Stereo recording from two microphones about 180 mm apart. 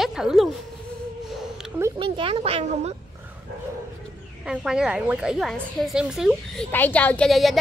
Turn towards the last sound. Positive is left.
turn(degrees=0)  # may be behind; listen again after turning